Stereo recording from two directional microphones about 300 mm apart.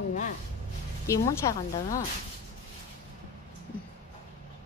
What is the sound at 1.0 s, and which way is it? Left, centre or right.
A woman's voice, centre.